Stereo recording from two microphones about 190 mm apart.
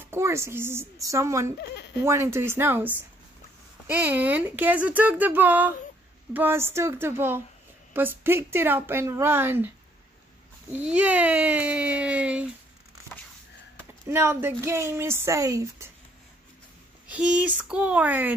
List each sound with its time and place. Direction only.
0.0 s speech: 15° right (ahead or behind)
10.7 s speech: 5° right (ahead or behind)
14.0 s speech: 15° right (ahead or behind)
17.1 s speech: 5° right (ahead or behind)